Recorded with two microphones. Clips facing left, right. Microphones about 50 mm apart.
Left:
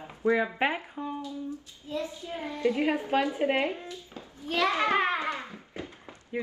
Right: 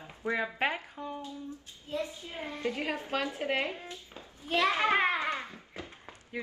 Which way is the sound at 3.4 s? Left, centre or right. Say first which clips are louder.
Left 5 dB; centre.